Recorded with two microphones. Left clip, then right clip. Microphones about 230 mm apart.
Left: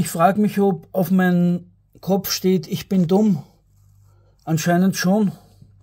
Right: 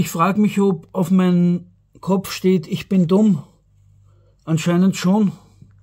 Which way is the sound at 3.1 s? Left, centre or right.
Centre.